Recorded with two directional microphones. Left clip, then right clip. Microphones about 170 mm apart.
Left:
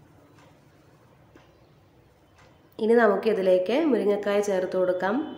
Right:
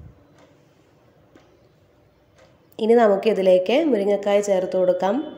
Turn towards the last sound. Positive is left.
turn(degrees=-20)  # may be behind; listen again after turning